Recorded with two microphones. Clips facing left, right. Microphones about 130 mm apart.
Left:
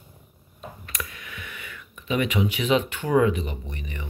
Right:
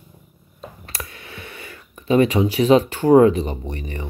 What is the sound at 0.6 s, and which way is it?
Speech, 35° right (ahead or behind).